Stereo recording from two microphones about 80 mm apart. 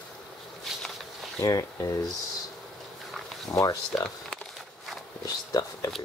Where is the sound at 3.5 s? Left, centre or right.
Left.